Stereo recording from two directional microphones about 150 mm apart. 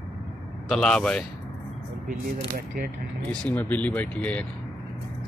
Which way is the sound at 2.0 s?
70° right (ahead or behind).